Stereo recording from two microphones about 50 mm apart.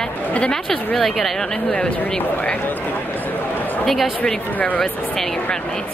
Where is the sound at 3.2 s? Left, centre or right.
Left.